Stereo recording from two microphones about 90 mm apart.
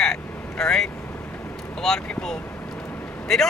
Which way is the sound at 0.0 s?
5° left (ahead or behind).